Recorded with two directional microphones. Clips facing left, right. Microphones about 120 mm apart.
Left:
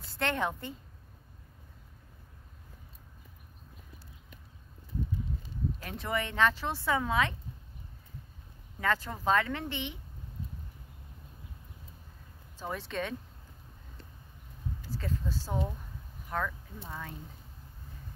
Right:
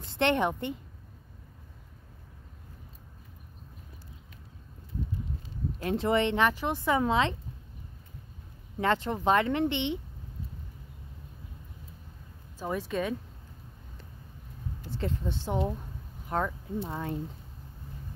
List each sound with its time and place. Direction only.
0.0 s a woman's voice: 20° right (ahead or behind)
5.8 s speech: 25° right (ahead or behind)
8.8 s speech: 25° right (ahead or behind)
12.5 s speech: 10° right (ahead or behind)
14.9 s speech: 25° right (ahead or behind)